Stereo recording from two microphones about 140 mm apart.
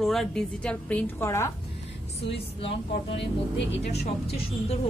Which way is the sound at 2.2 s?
40° left (ahead or behind).